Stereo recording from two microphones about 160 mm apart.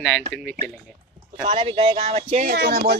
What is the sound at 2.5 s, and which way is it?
Speech, 80° right.